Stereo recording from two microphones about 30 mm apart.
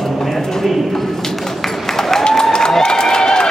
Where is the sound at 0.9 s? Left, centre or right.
Centre.